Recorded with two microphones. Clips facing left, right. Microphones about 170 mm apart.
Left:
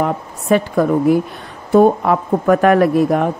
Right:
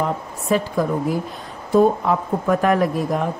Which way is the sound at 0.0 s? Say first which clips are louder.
Left 4 dB; 65° left (ahead or behind).